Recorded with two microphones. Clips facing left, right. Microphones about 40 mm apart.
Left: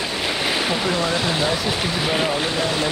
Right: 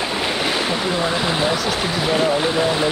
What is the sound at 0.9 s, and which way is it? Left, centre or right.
Speech, centre.